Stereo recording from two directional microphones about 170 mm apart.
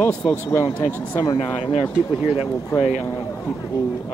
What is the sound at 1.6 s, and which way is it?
Speech, 35° left (ahead or behind).